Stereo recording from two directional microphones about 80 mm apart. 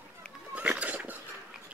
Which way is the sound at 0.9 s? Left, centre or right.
Right.